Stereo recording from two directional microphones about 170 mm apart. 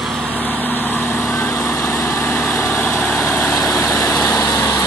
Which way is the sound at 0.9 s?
15° left (ahead or behind).